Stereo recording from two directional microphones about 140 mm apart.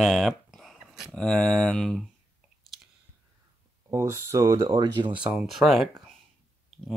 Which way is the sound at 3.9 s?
20° right (ahead or behind).